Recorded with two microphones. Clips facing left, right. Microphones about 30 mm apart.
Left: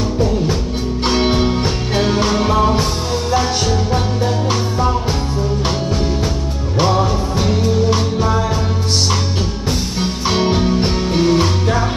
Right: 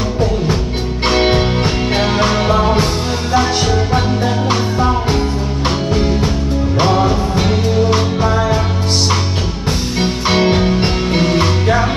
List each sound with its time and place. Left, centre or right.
1.0 s music: right
5.9 s music: right
9.9 s music: right